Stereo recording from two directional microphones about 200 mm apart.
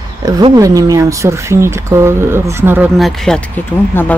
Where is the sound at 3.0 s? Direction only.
Centre (ahead or behind).